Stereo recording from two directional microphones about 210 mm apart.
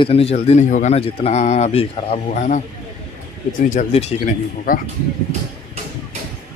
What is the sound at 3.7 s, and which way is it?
Speech, 35° left (ahead or behind).